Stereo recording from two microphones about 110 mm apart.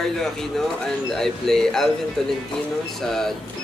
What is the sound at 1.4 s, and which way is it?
Speech, 5° left (ahead or behind).